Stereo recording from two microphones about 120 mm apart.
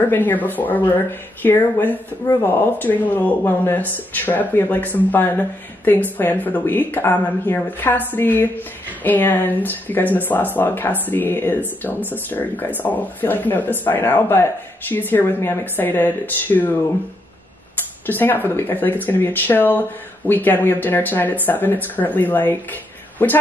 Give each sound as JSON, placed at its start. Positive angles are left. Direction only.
{"t": 0.1, "sound": "speech", "side_deg": 15}
{"t": 18.0, "sound": "speech", "side_deg": 15}